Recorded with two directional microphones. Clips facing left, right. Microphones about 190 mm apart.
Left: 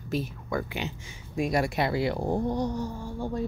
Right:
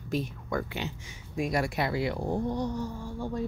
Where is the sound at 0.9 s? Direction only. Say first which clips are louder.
Left 2 dB; 25° left (ahead or behind).